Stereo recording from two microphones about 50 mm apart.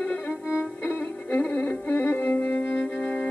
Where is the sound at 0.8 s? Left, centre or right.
Left.